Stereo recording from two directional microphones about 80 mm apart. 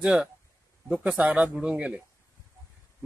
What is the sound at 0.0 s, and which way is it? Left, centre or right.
Speech, centre.